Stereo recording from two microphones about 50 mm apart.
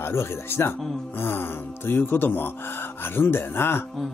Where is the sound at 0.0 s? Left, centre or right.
Left.